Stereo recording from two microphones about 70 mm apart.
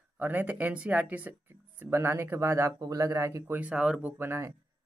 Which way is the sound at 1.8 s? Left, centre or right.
Right.